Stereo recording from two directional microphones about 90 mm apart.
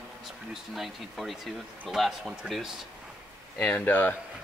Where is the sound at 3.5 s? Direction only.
15° left (ahead or behind).